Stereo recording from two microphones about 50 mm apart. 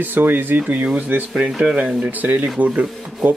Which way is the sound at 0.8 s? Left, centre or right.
Right.